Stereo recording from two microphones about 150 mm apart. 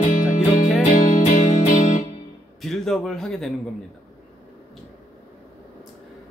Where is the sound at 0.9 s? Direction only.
60° left (ahead or behind).